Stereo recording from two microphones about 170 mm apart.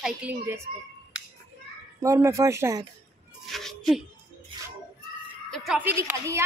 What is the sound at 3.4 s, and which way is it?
Music, centre (ahead or behind).